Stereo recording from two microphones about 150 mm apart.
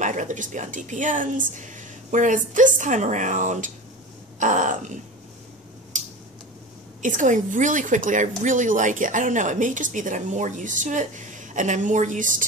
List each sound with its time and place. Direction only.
0.0 s a woman's voice: 55° right (ahead or behind)
5.9 s a sound: 55° right (ahead or behind)
7.0 s a woman's voice: 55° right (ahead or behind)